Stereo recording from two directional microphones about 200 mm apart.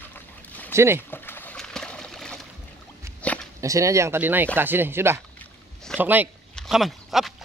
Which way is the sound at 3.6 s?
15° right (ahead or behind).